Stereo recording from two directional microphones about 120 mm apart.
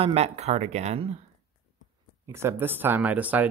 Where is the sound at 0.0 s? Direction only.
60° right (ahead or behind).